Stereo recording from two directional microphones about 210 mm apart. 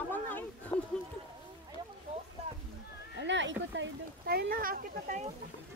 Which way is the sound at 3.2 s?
60° right (ahead or behind).